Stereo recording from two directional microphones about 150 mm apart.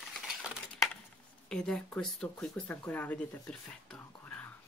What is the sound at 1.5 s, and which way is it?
Speech, 5° left (ahead or behind).